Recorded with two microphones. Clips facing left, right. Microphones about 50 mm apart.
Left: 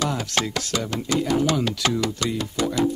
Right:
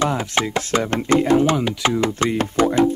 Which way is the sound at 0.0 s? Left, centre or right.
Right.